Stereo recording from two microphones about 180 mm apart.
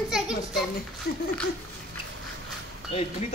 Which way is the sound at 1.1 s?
65° left (ahead or behind).